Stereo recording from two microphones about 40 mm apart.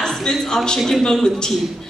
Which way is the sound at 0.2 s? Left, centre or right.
Centre.